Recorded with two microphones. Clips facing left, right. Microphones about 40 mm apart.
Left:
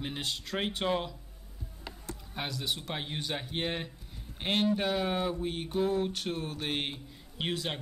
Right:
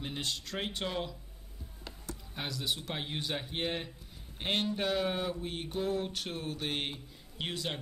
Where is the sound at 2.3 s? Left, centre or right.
Centre.